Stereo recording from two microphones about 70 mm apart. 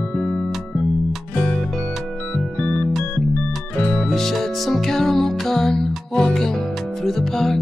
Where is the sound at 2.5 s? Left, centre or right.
Left.